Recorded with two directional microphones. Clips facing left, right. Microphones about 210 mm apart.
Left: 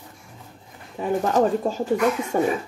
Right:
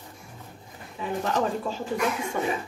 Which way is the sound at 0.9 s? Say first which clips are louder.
Left 7 dB; 45° left (ahead or behind).